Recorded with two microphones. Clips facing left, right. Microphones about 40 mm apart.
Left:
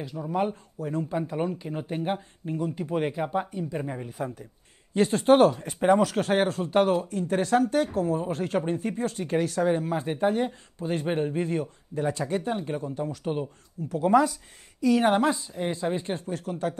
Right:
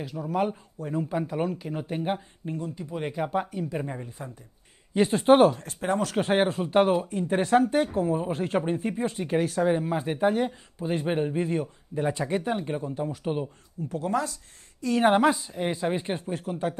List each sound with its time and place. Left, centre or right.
0.0 s speech: centre
2.8 s speech: left
3.2 s speech: centre
4.2 s speech: centre
5.1 s speech: centre
5.6 s speech: centre
6.1 s speech: centre
12.1 s speech: right
12.4 s speech: centre
13.4 s speech: centre
14.0 s speech: centre
15.0 s speech: right